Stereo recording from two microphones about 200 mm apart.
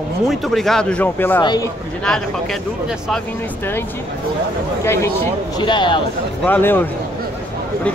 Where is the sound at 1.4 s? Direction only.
20° left (ahead or behind).